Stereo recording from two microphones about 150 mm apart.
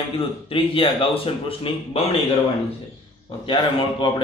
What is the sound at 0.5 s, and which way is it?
Speech, 35° left (ahead or behind).